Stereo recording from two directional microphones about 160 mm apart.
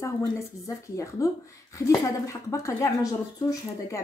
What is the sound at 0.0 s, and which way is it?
Speech, 20° left (ahead or behind).